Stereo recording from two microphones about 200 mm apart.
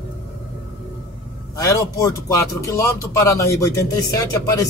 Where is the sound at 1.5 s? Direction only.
15° left (ahead or behind).